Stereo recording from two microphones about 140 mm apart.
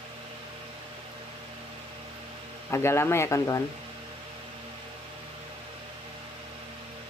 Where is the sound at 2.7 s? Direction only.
20° left (ahead or behind).